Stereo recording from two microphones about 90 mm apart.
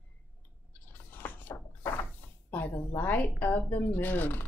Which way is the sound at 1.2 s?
20° left (ahead or behind).